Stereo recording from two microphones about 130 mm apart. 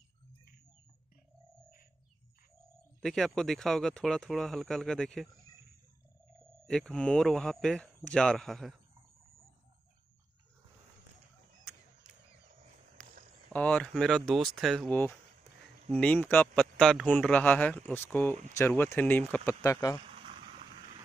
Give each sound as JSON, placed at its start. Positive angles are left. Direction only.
{"t": 3.0, "sound": "speech", "side_deg": 5}
{"t": 6.6, "sound": "speech", "side_deg": 5}
{"t": 13.0, "sound": "a sound", "side_deg": 10}
{"t": 13.5, "sound": "a man's voice", "side_deg": 10}
{"t": 19.6, "sound": "speech", "side_deg": 25}
{"t": 20.1, "sound": "vehicle", "side_deg": -50}